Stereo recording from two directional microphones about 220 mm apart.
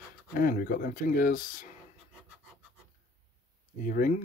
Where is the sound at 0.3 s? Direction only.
40° left (ahead or behind).